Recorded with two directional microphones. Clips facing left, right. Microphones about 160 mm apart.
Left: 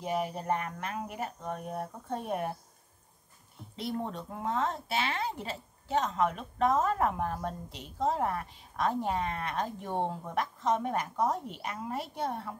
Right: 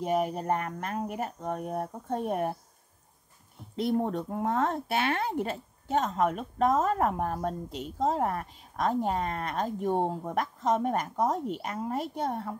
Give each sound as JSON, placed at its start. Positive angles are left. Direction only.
{"t": 0.0, "sound": "a woman's voice", "side_deg": -45}
{"t": 4.3, "sound": "a woman's voice", "side_deg": -50}
{"t": 9.8, "sound": "speech", "side_deg": -10}
{"t": 10.2, "sound": "a woman's voice", "side_deg": -45}